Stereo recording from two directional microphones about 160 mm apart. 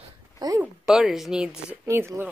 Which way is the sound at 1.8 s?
15° right (ahead or behind).